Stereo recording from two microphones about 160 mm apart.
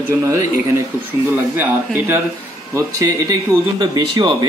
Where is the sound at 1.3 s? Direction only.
10° right (ahead or behind).